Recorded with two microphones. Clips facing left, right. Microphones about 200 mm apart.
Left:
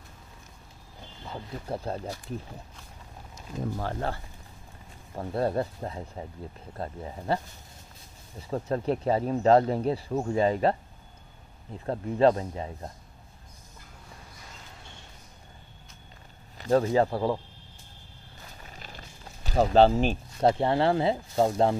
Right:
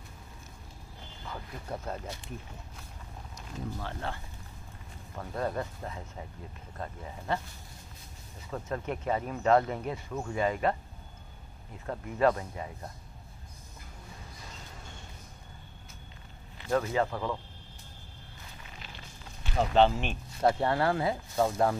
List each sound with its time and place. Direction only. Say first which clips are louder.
1.2 s speech: left 4 dB; 30° left (ahead or behind)
3.7 s speech: left 6 dB; 40° left (ahead or behind)
11.8 s speech: left 5 dB; 30° left (ahead or behind)
16.5 s speech: left 6 dB; 35° left (ahead or behind)
18.7 s a sound: left 2 dB; 40° left (ahead or behind)
20.4 s speech: left 3 dB; 25° left (ahead or behind)